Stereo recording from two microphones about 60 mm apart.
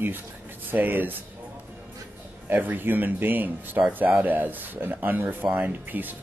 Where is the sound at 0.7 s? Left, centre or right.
Right.